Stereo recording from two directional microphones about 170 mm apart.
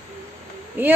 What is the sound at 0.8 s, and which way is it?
Speech, 10° right (ahead or behind).